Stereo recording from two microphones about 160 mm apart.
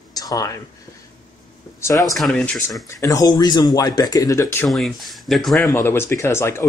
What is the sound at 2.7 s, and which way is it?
Speech, 20° left (ahead or behind).